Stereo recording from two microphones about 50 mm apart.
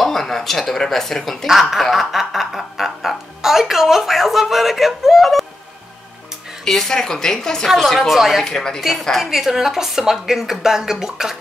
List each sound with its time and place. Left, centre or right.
0.0 s speech: centre
1.6 s music: centre
6.6 s a woman's voice: centre
8.5 s a woman's voice: centre
9.0 s a woman's voice: centre